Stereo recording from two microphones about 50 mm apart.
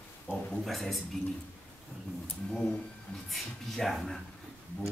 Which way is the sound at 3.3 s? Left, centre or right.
Centre.